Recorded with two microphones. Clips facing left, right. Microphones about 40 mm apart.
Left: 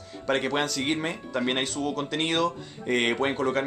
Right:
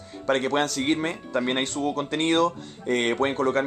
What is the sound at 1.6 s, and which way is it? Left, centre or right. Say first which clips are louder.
Speech: right 2 dB; right.